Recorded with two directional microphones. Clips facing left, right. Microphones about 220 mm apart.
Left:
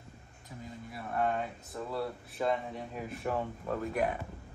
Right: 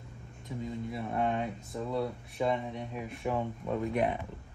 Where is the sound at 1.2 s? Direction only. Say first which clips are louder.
Left 1 dB; centre (ahead or behind).